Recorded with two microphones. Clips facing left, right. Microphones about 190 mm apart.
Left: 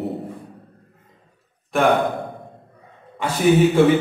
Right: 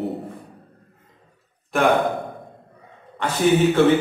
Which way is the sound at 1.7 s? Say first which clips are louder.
Left 1 dB; centre (ahead or behind).